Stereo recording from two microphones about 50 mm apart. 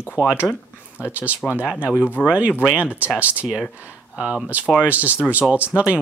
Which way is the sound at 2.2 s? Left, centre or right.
Left.